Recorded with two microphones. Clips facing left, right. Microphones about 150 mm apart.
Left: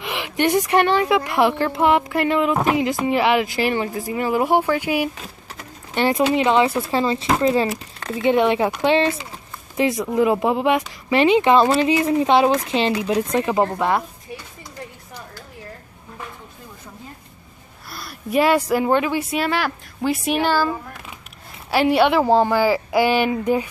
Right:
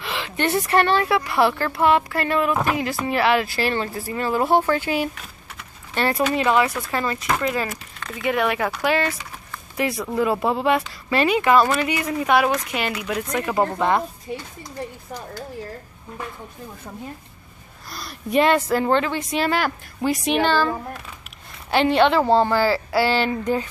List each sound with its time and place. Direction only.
0.0 s a woman's voice: 15° left (ahead or behind)
13.7 s a woman's voice: 10° left (ahead or behind)
17.9 s a woman's voice: 5° left (ahead or behind)